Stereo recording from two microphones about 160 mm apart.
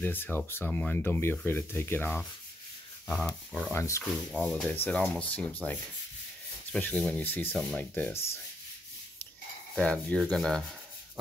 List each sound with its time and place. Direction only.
0.0 s speech: 15° left (ahead or behind)
3.7 s speech: 20° left (ahead or behind)
4.0 s speech: centre (ahead or behind)
9.8 s a sound: 5° left (ahead or behind)